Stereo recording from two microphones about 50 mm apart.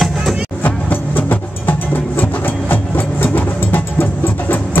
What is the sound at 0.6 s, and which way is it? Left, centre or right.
Music, left.